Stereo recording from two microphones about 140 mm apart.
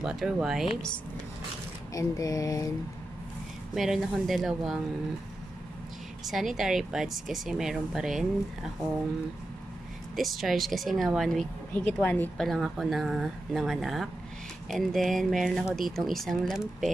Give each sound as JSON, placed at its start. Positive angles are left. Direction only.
{"t": 0.0, "sound": "speech", "side_deg": -5}
{"t": 2.0, "sound": "a sound", "side_deg": 25}
{"t": 3.7, "sound": "speech", "side_deg": -5}
{"t": 6.2, "sound": "speech", "side_deg": 0}
{"t": 10.1, "sound": "speech", "side_deg": 0}
{"t": 11.7, "sound": "speech", "side_deg": 10}
{"t": 12.4, "sound": "speech", "side_deg": 0}